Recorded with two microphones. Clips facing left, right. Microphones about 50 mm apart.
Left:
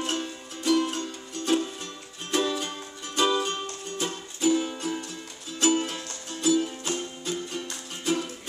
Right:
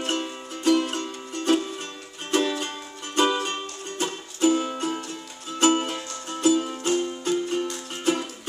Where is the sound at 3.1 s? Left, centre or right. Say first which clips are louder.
Right 2 dB; right.